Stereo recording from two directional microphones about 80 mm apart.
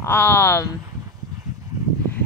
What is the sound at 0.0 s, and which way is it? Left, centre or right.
Speech, left.